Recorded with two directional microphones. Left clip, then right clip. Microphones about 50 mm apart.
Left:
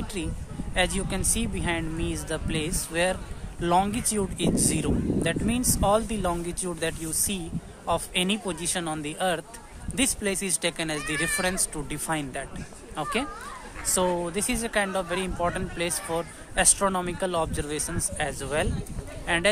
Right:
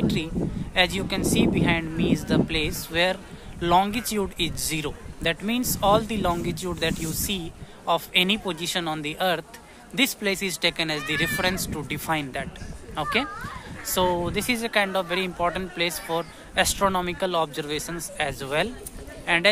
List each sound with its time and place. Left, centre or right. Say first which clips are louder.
0.7 s speech: right 4 dB; right
14.2 s speech: right 3 dB; right; by 18.0 s centre
18.1 s speech: right 3 dB; right